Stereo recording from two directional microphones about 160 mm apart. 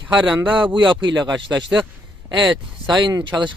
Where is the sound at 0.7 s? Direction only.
30° right (ahead or behind).